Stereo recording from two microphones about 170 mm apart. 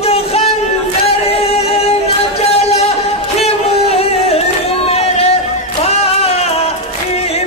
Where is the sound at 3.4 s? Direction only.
35° left (ahead or behind).